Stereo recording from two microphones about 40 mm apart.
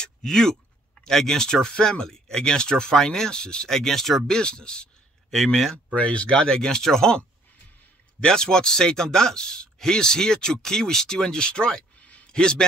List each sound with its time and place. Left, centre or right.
0.0 s speech: centre
4.4 s speech: left
5.3 s speech: centre
5.9 s speech: left; by 7.1 s centre
8.2 s speech: centre
12.0 s a sound: left
12.3 s a man's voice: left